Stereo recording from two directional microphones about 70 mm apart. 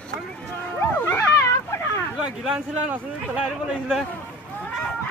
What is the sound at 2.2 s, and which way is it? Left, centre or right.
Speech, centre.